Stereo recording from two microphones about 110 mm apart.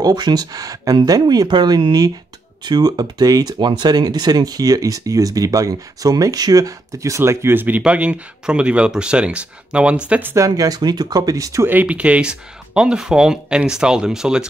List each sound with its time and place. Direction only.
0.0 s speech: 40° right (ahead or behind); by 10.3 s 10° right (ahead or behind)
10.3 s speech: 30° right (ahead or behind)
11.7 s speech: 15° right (ahead or behind)